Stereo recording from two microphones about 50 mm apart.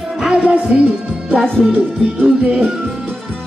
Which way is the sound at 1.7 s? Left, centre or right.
Right.